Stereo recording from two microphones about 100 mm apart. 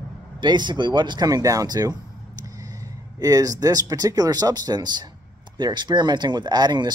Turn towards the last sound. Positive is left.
turn(degrees=-45)  # may be behind; listen again after turning